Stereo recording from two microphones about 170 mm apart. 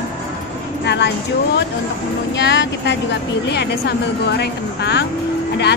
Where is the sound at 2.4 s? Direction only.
90° left.